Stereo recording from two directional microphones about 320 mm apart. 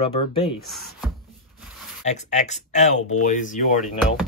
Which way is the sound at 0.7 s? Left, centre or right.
Centre.